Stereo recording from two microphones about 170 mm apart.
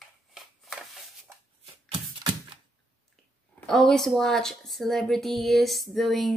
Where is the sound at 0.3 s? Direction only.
Centre (ahead or behind).